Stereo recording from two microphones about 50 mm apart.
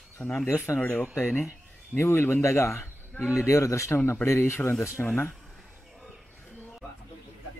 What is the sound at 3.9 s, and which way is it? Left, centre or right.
Speech, left.